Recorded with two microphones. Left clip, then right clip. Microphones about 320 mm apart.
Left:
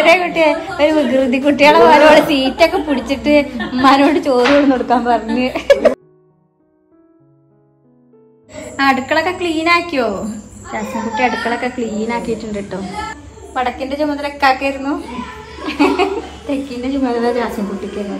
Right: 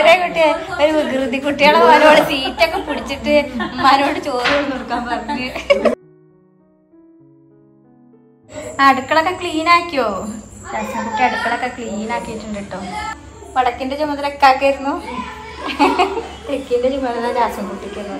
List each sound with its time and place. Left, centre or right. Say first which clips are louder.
0.0 s a woman's voice: left 1 dB; centre
8.5 s a woman's voice: right 2 dB; centre